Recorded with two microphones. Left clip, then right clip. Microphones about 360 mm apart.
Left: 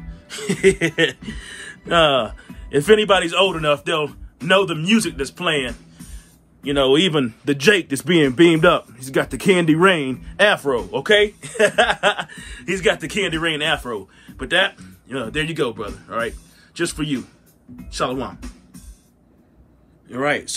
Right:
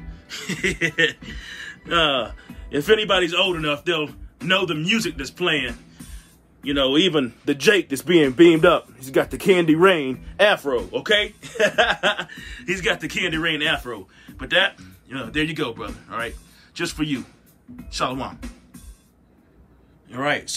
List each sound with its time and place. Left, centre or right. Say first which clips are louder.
0.1 s a man's voice: left 4 dB; centre
20.1 s speech: left 2 dB; centre